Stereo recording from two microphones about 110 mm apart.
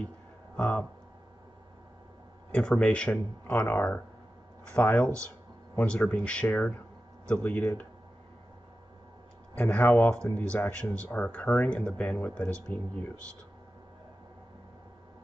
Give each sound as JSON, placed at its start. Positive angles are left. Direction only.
{"t": 0.6, "sound": "speech", "side_deg": 10}
{"t": 2.5, "sound": "speech", "side_deg": 10}
{"t": 9.6, "sound": "speech", "side_deg": 15}